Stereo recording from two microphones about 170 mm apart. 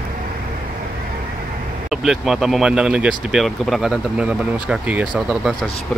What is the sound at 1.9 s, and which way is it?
Speech, 5° right (ahead or behind).